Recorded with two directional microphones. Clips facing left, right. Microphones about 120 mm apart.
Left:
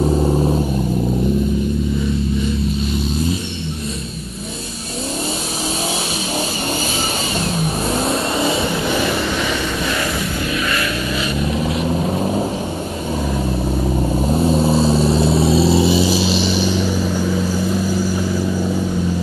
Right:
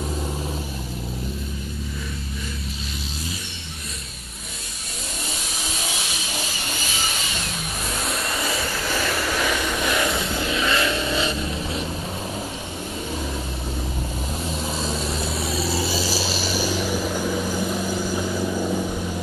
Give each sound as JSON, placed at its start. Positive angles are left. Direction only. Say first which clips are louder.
{"t": 0.0, "sound": "vehicle", "louder": "left 13 dB", "side_deg": 35}
{"t": 7.9, "sound": "vehicle", "louder": "left 7 dB", "side_deg": 25}
{"t": 9.1, "sound": "vehicle", "louder": "left 4 dB", "side_deg": 0}
{"t": 9.8, "sound": "vehicle", "louder": "left 2 dB", "side_deg": -20}
{"t": 11.6, "sound": "vehicle", "louder": "left 9 dB", "side_deg": 35}
{"t": 14.5, "sound": "vehicle", "louder": "left 12 dB", "side_deg": 30}
{"t": 16.7, "sound": "vehicle", "louder": "left 5 dB", "side_deg": -10}
{"t": 18.5, "sound": "vehicle", "louder": "left 4 dB", "side_deg": 0}